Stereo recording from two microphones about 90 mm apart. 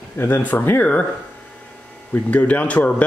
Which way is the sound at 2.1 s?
15° left (ahead or behind).